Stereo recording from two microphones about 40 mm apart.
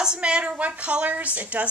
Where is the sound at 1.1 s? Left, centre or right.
Right.